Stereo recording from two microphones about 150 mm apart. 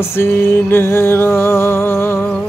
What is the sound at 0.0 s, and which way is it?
Mantra, 15° left (ahead or behind).